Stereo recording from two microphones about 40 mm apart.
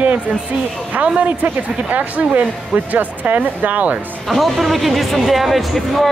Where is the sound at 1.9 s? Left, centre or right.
Right.